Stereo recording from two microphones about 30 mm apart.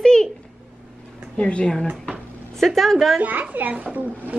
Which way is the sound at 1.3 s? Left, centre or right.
Left.